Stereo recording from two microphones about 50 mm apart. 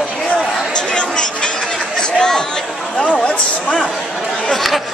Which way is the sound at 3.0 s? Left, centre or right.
Left.